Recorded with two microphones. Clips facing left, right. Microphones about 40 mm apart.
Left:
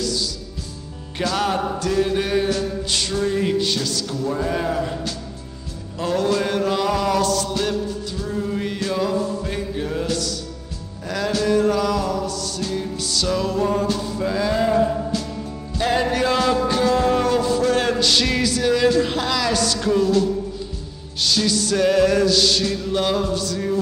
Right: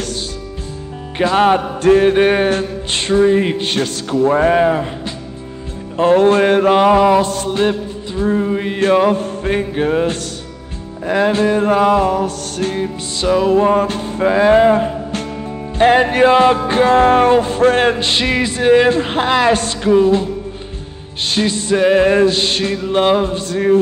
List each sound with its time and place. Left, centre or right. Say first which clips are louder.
0.0 s music: right 1 dB; right
1.1 s music: right 9 dB; right
8.8 s music: right 10 dB; right